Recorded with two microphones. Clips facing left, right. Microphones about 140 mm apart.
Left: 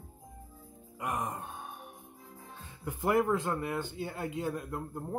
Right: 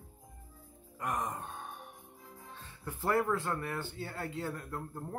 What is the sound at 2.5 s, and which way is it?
Speech, 15° left (ahead or behind).